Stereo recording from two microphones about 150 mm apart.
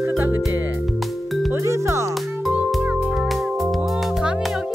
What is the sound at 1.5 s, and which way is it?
Music, 20° right (ahead or behind).